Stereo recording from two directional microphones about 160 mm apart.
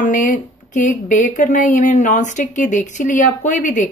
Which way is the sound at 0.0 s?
55° left (ahead or behind).